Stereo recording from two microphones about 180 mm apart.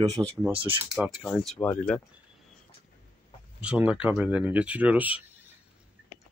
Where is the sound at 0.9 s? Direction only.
Centre (ahead or behind).